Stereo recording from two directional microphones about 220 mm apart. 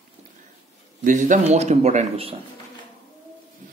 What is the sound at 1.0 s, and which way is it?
Speech, 35° right (ahead or behind).